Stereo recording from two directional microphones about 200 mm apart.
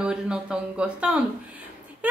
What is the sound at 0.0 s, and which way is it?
A woman's voice, 5° right (ahead or behind).